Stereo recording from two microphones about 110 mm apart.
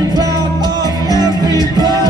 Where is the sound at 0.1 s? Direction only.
35° right (ahead or behind).